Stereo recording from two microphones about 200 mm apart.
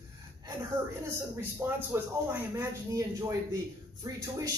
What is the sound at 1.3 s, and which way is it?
Speech, 15° right (ahead or behind).